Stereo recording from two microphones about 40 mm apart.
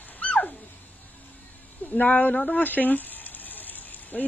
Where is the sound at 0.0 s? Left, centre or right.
Left.